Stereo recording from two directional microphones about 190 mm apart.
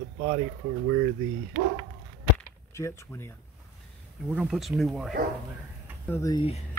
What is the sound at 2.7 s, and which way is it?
Speech, 15° left (ahead or behind).